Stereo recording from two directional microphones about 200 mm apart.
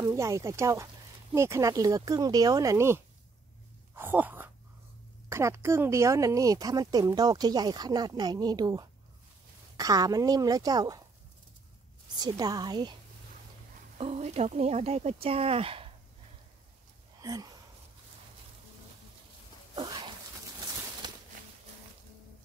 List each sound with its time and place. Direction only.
0.0 s speech: 15° right (ahead or behind)
12.2 s speech: 20° right (ahead or behind)
13.9 s speech: 30° right (ahead or behind)
17.2 s speech: 15° right (ahead or behind)
19.7 s dog: 20° right (ahead or behind)
21.0 s a sound: 20° right (ahead or behind)